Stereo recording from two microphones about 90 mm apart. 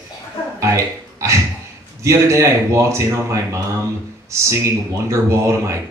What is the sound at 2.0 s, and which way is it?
Speech, 35° right (ahead or behind).